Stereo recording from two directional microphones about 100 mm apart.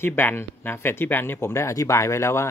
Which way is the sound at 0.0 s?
20° left (ahead or behind).